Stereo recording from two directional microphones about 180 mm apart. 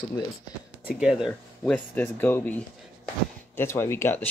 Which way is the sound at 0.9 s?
5° right (ahead or behind).